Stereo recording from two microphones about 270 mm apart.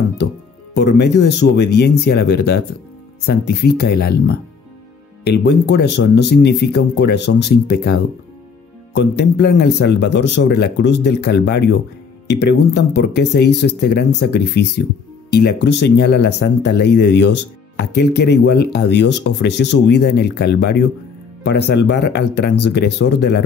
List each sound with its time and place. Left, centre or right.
0.7 s speech: left